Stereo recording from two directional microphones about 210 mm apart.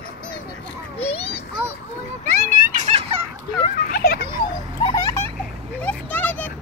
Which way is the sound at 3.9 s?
45° left (ahead or behind).